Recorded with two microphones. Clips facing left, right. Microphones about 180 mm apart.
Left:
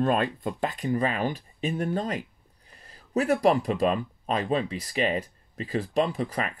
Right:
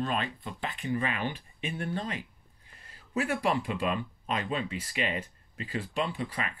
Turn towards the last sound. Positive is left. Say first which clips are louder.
# left 5 dB
turn(degrees=45)  # may be behind; listen again after turning